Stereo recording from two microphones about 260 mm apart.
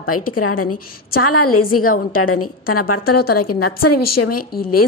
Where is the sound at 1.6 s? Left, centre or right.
Left.